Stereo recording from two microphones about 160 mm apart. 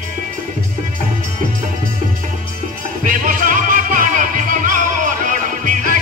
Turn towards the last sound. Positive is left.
turn(degrees=-55)  # may be behind; listen again after turning